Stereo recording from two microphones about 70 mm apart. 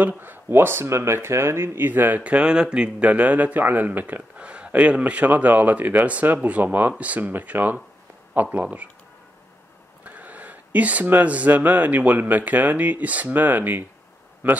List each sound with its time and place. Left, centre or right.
0.2 s speech: right
10.0 s speech: right